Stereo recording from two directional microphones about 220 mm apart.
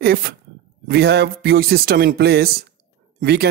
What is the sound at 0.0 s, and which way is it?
Speech, 45° right (ahead or behind).